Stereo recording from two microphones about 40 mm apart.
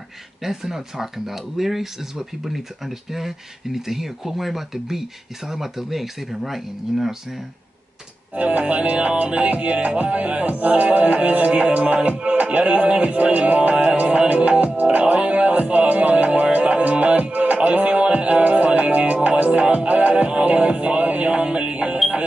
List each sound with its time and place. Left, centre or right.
0.4 s speech: centre
8.4 s music: right